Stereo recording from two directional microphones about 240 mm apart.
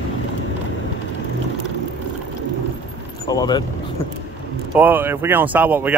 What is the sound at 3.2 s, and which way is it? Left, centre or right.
Vehicle, centre.